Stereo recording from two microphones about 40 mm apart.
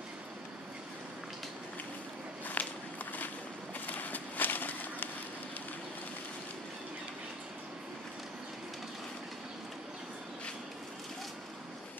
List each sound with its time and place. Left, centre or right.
2.6 s walk: left
3.8 s run: left